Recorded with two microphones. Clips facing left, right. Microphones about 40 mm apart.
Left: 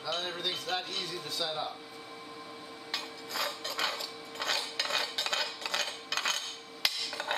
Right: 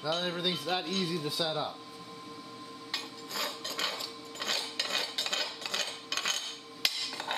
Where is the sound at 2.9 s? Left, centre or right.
Centre.